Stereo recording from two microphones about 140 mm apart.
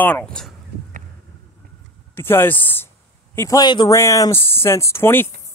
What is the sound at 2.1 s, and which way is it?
Speech, 15° left (ahead or behind).